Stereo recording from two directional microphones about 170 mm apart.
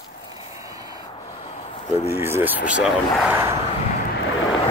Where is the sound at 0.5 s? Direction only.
20° right (ahead or behind).